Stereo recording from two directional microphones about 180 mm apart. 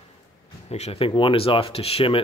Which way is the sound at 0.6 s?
35° left (ahead or behind).